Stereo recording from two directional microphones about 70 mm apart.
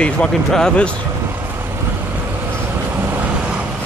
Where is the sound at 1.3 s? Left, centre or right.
Right.